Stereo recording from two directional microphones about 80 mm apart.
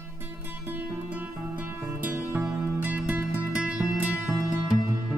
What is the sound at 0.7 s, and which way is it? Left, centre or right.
Music, right.